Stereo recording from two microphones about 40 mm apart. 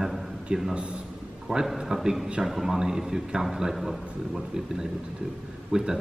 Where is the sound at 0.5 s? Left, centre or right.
Right.